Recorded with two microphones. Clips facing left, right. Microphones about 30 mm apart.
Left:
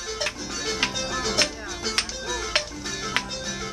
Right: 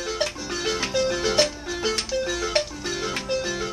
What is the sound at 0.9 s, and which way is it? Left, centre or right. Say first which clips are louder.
Music: right 5 dB; centre.